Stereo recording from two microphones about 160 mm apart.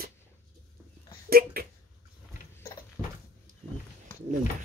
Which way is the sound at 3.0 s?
10° right (ahead or behind).